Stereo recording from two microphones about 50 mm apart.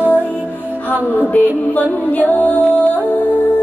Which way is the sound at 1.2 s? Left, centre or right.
Left.